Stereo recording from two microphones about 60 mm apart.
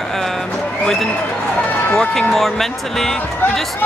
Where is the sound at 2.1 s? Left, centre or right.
Centre.